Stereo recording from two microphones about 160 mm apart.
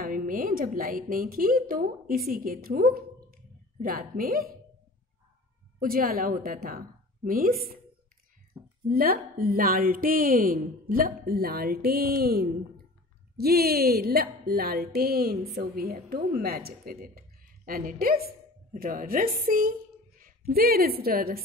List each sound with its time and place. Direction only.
0.0 s a woman's voice: 60° right (ahead or behind)
5.8 s a woman's voice: 60° right (ahead or behind)
8.8 s a woman's voice: 65° right (ahead or behind)